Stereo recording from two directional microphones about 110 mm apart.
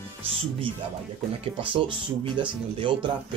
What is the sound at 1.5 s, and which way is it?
Speech, 50° right (ahead or behind).